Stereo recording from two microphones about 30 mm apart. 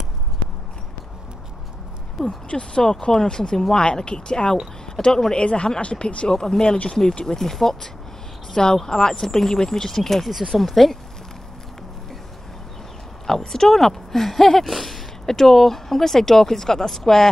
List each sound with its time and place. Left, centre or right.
2.2 s speech: left
5.4 s speech: left
6.3 s speech: centre
6.6 s speech: left
7.6 s speech: centre
8.8 s speech: left
13.5 s speech: centre
15.2 s speech: centre